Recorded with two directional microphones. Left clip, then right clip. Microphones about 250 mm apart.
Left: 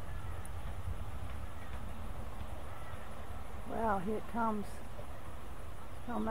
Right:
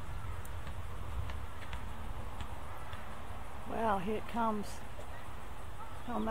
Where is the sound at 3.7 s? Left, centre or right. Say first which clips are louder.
Right 1 dB; centre.